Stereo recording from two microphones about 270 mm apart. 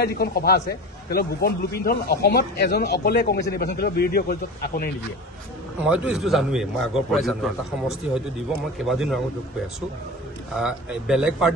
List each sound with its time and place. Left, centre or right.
0.0 s a man's voice: left
5.9 s a man's voice: centre
8.7 s a man's voice: centre
10.5 s a man's voice: centre